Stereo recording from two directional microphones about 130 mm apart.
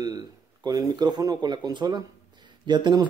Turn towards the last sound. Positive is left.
turn(degrees=-35)  # may be behind; listen again after turning